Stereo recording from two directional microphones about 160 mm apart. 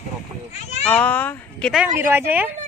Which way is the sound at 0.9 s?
10° left (ahead or behind).